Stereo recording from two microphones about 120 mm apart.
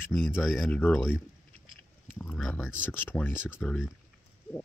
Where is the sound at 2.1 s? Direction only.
10° left (ahead or behind).